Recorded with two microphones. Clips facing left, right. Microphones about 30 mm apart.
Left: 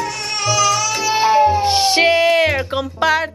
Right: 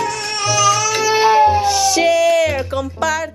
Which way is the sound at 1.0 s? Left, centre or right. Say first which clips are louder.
Right 2 dB; centre.